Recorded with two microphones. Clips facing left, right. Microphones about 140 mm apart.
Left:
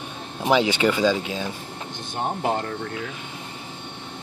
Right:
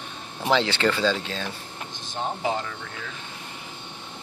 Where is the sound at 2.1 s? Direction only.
55° left (ahead or behind).